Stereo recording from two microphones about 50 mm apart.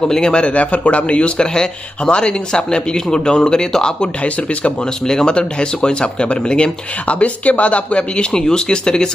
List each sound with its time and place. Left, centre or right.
0.0 s a man's voice: centre
4.2 s speech: left
5.0 s speech: centre